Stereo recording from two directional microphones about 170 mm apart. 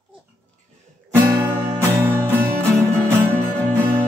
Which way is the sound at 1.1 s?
15° right (ahead or behind).